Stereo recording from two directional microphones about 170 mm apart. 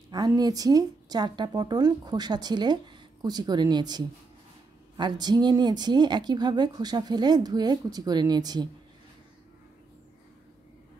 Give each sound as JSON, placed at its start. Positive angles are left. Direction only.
{"t": 0.1, "sound": "a woman's voice", "side_deg": -25}